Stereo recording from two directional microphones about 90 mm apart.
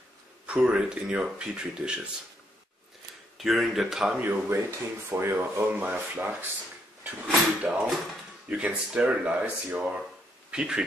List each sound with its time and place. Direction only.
0.5 s speech: 10° right (ahead or behind)
3.3 s speech: centre (ahead or behind)
4.2 s speech: 30° right (ahead or behind)
7.0 s a sound: 15° right (ahead or behind)
8.5 s speech: 15° right (ahead or behind)